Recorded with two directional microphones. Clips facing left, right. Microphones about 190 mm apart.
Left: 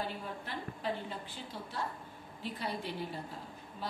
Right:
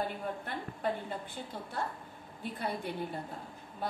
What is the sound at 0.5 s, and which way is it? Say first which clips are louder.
A woman's voice: right 1 dB; 55° right (ahead or behind).